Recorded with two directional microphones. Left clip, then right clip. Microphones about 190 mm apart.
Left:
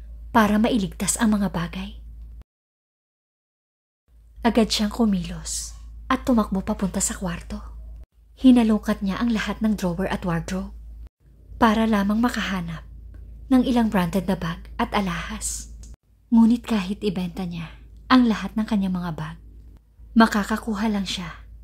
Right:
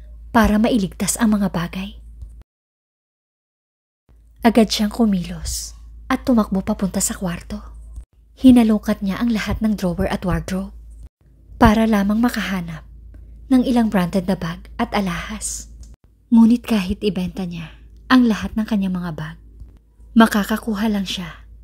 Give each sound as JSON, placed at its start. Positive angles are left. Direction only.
{"t": 0.3, "sound": "a woman's voice", "side_deg": -20}
{"t": 4.4, "sound": "a woman's voice", "side_deg": -25}